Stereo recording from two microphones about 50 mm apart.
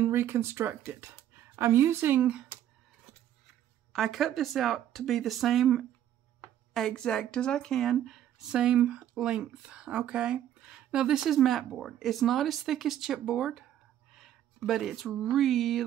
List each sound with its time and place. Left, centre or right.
0.0 s speech: right
2.2 s speech: right
3.9 s speech: centre
6.9 s speech: centre
7.8 s speech: centre
8.2 s speech: centre
14.7 s speech: centre